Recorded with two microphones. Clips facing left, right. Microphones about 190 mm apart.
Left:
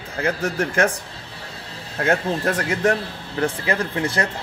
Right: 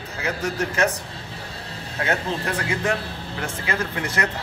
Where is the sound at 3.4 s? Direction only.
30° left (ahead or behind).